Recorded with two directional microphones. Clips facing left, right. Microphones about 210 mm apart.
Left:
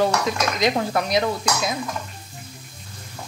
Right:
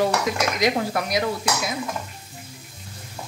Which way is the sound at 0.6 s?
25° left (ahead or behind).